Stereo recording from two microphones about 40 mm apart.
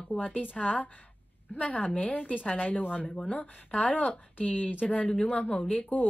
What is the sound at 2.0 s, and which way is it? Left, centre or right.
Speech, left.